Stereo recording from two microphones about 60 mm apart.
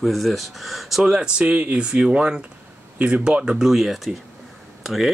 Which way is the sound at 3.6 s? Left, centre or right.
Centre.